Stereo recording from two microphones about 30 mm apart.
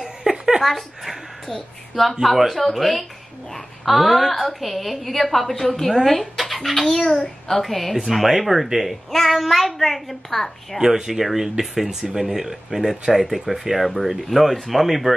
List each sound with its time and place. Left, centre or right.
0.0 s giggle: centre
0.6 s a woman's voice: centre
2.2 s a woman's voice: centre
6.8 s a child's voice: centre
7.6 s a woman's voice: centre
10.8 s speech: centre
12.7 s speech: right
13.1 s a woman's voice: centre